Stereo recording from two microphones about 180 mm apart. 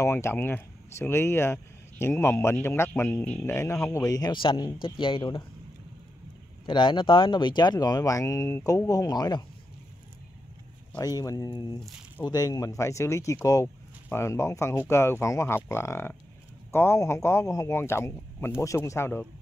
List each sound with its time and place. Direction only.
0.0 s speech: 15° left (ahead or behind)
6.6 s speech: 25° left (ahead or behind)
11.0 s speech: 20° left (ahead or behind)